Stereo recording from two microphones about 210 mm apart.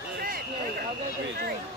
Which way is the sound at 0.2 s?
45° right (ahead or behind).